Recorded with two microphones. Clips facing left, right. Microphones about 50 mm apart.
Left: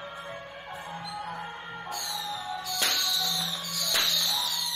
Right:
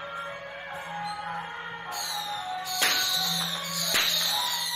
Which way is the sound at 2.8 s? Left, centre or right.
Centre.